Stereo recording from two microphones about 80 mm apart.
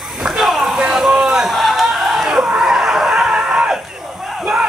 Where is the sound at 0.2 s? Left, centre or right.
Centre.